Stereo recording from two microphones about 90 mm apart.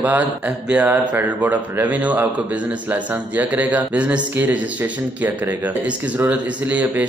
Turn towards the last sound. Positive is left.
turn(degrees=-20)  # may be behind; listen again after turning